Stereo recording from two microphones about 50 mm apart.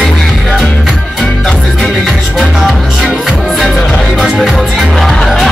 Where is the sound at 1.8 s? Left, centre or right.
Centre.